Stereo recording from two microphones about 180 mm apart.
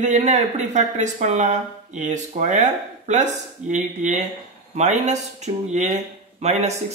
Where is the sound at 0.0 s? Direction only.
40° right (ahead or behind).